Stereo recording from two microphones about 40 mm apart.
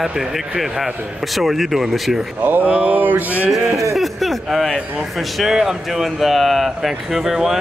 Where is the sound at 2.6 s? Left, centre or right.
Right.